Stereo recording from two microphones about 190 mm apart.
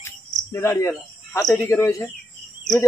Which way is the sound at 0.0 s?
15° left (ahead or behind).